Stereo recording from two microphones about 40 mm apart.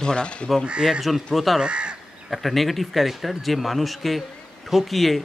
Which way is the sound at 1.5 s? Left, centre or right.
Right.